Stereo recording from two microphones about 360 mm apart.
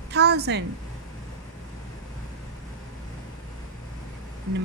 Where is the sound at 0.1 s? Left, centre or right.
Right.